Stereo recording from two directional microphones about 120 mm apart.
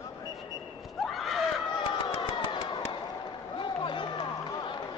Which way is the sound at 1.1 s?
Centre (ahead or behind).